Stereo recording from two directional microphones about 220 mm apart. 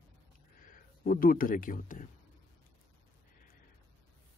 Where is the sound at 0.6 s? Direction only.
40° left (ahead or behind).